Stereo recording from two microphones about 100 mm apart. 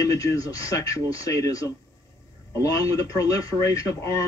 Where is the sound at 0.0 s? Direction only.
35° left (ahead or behind).